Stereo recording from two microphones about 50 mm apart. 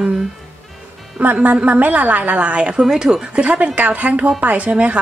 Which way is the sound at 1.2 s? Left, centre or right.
Right.